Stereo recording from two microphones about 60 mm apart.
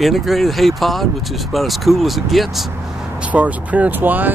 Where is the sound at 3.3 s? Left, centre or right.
Right.